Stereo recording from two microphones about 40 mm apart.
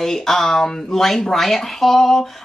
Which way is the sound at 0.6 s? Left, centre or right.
Centre.